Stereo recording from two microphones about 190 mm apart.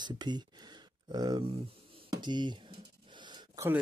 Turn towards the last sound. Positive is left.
turn(degrees=-10)  # may be behind; listen again after turning